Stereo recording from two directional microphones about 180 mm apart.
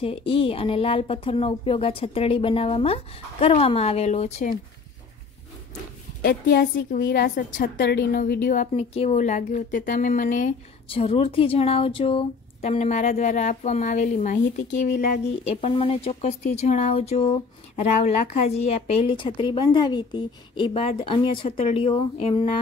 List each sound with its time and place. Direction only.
0.0 s speech: 30° left (ahead or behind)
6.2 s a woman's voice: 60° left (ahead or behind)
7.7 s a woman's voice: 65° left (ahead or behind)
8.5 s speech: 35° left (ahead or behind)
10.9 s speech: 30° left (ahead or behind)
15.4 s a woman's voice: 30° left (ahead or behind)